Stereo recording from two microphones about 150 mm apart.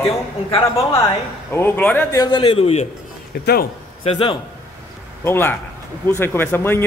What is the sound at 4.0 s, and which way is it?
Speech, 40° left (ahead or behind).